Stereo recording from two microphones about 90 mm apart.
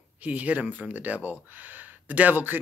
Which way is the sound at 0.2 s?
15° right (ahead or behind).